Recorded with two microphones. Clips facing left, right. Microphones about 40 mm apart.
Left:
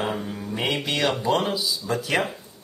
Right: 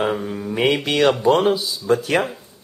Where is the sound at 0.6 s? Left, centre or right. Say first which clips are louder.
Right 7 dB; right.